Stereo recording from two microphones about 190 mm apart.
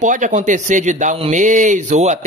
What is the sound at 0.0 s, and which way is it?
Speech, 40° right (ahead or behind).